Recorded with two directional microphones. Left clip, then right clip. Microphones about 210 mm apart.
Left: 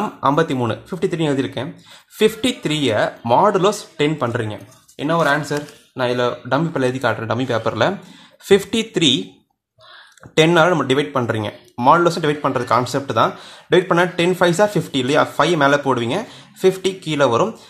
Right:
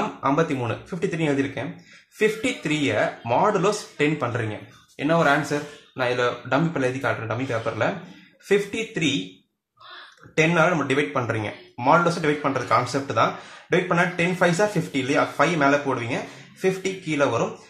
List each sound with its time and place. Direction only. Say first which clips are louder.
0.2 s speech: left 6 dB; 40° left (ahead or behind)
10.5 s speech: left 6 dB; 40° left (ahead or behind)